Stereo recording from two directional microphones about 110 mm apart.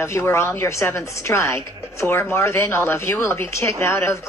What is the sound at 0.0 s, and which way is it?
A woman's voice, 25° left (ahead or behind).